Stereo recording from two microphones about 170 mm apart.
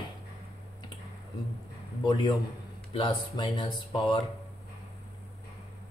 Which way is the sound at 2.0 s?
25° left (ahead or behind).